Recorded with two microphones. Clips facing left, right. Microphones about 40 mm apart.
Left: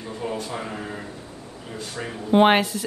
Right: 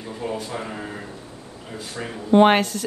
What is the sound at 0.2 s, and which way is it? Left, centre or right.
Speech, centre.